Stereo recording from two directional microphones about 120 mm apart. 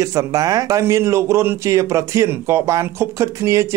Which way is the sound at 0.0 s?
30° right (ahead or behind).